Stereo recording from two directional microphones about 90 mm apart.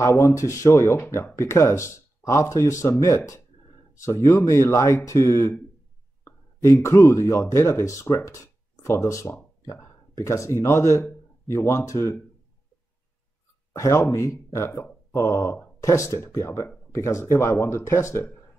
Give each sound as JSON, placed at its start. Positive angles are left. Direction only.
{"t": 0.0, "sound": "speech", "side_deg": 35}
{"t": 13.7, "sound": "speech", "side_deg": 35}